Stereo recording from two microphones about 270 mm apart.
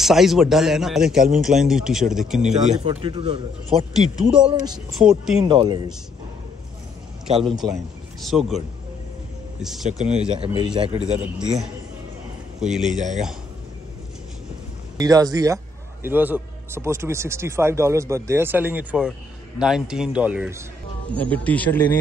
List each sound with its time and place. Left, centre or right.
0.0 s speech: centre
2.8 s speech: right
3.9 s speech: centre
5.4 s a man's voice: centre
7.6 s speech: centre
9.8 s speech: right
12.5 s a man's voice: centre
12.9 s speech: right
15.0 s a man's voice: centre
21.1 s speech: centre